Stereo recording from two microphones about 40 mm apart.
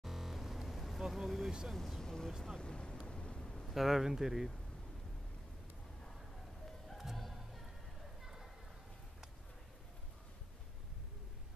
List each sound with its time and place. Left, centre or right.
0.0 s music: centre
1.0 s speech: centre
2.6 s speech: left
3.1 s vehicle: left
3.3 s a sound: centre
3.6 s speech: centre
7.0 s music: centre
8.2 s a sound: centre